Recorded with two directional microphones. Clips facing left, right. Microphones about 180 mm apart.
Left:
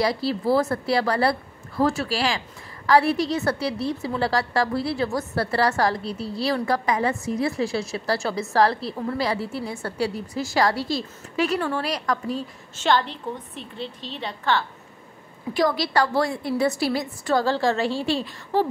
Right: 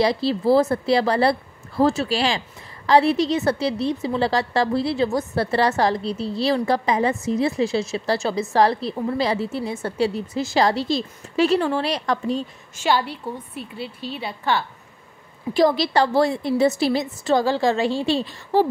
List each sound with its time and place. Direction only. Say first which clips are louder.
0.0 s a woman's voice: right 3 dB; 25° right (ahead or behind)
12.7 s a woman's voice: even; 10° right (ahead or behind)
15.5 s a woman's voice: right 4 dB; 25° right (ahead or behind)